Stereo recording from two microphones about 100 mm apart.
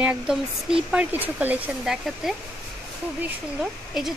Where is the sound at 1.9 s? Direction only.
5° right (ahead or behind).